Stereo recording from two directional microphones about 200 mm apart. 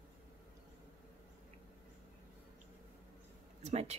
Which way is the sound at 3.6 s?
35° right (ahead or behind).